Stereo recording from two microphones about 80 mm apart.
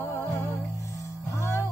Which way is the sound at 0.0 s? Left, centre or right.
Left.